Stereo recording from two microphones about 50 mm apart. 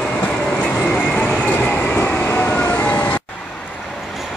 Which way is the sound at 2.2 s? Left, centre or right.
Left.